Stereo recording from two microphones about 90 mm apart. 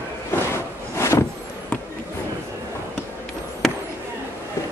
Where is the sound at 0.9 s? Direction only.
30° left (ahead or behind).